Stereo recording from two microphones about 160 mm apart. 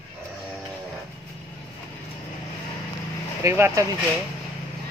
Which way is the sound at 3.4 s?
15° right (ahead or behind).